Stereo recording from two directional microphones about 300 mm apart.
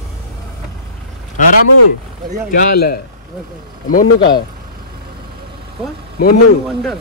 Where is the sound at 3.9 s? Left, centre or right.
Left.